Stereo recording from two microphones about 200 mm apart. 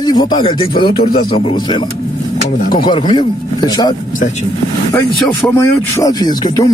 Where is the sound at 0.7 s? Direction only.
50° left (ahead or behind).